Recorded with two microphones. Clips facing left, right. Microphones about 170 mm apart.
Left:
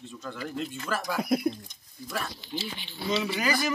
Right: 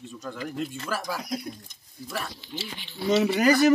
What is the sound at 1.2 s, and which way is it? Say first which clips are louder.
Speech: left 7 dB; 60° left (ahead or behind).